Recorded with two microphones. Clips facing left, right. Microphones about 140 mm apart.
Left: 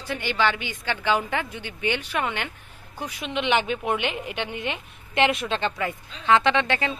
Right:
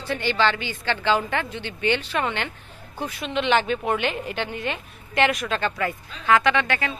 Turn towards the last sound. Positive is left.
turn(degrees=25)  # may be behind; listen again after turning